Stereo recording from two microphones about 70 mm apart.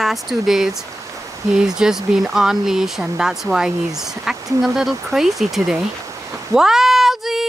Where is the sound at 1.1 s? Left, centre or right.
Right.